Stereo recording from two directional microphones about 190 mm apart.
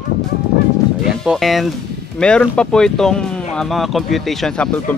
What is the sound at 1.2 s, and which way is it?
Speech, centre (ahead or behind).